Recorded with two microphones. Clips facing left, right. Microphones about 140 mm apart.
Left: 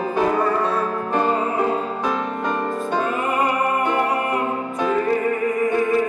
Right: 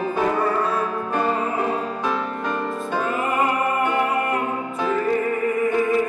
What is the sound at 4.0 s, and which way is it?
Music, centre (ahead or behind).